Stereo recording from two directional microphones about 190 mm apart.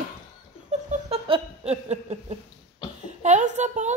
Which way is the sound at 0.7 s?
35° right (ahead or behind).